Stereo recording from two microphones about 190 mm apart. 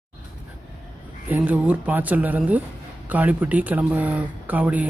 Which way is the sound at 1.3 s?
10° right (ahead or behind).